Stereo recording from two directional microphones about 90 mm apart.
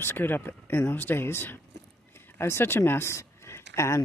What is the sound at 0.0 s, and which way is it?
Speech, 25° left (ahead or behind).